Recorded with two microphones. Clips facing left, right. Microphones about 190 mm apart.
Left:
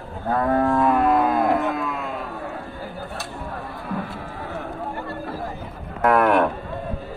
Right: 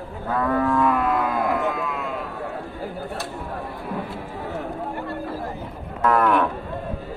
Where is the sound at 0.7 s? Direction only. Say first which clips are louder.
Left 2 dB; 40° left (ahead or behind).